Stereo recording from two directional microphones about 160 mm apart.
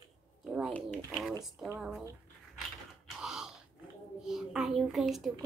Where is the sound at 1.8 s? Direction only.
5° right (ahead or behind).